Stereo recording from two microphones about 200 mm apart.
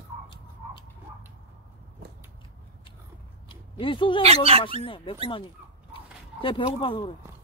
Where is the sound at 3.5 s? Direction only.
25° left (ahead or behind).